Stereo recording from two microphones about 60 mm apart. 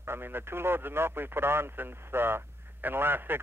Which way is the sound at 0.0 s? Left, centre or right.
Right.